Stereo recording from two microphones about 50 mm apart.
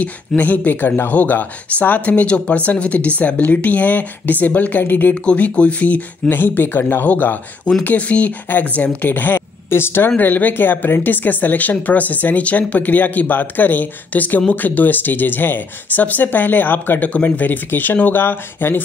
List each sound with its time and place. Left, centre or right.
0.4 s speech: left
5.2 s speech: left
9.7 s speech: left